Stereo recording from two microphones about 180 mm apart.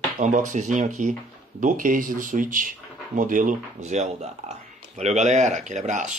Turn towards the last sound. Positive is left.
turn(degrees=-40)  # may be behind; listen again after turning